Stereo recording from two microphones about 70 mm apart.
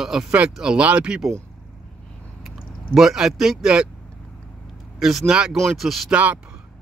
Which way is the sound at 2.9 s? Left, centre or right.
Centre.